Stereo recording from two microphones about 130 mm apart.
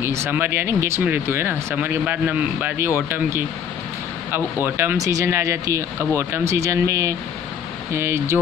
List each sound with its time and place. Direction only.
0.0 s speech: 20° right (ahead or behind)